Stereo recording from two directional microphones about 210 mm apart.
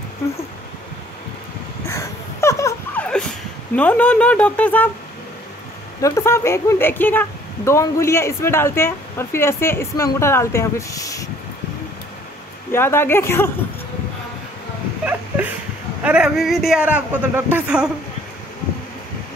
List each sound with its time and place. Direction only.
1.9 s dog: 15° left (ahead or behind)
3.7 s speech: 5° left (ahead or behind)
5.9 s speech: 15° left (ahead or behind)
12.7 s speech: 10° left (ahead or behind)
15.0 s a sound: 10° right (ahead or behind)
16.0 s a man's voice: 5° right (ahead or behind)